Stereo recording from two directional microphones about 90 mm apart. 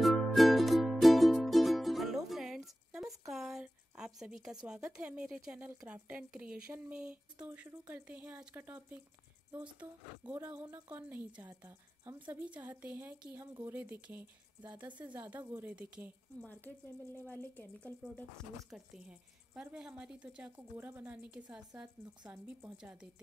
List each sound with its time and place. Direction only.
0.0 s music: centre (ahead or behind)
3.6 s a woman's voice: 10° right (ahead or behind)
12.0 s a woman's voice: 35° right (ahead or behind)
12.4 s a woman's voice: 15° right (ahead or behind)
13.4 s speech: 35° right (ahead or behind)
13.7 s a woman's voice: 20° right (ahead or behind)
16.3 s speech: 20° left (ahead or behind)
18.7 s a woman's voice: 10° right (ahead or behind)